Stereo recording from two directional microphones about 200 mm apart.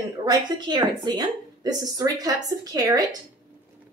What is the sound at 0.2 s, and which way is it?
A woman's voice, 20° right (ahead or behind).